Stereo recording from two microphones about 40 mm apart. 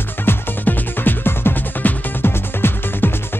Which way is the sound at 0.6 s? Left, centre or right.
Left.